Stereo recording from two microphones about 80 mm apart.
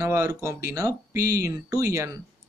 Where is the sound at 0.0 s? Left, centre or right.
Right.